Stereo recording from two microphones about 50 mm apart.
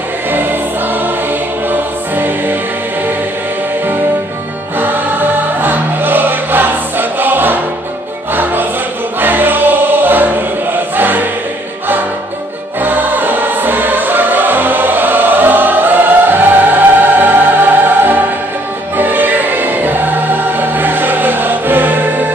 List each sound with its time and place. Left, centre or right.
0.3 s choir: right
1.7 s music: right
4.7 s music: right
9.2 s music: right
11.0 s choir: right
12.8 s music: right